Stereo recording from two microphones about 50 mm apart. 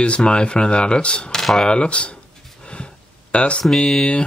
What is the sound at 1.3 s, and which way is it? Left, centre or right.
Speech, centre.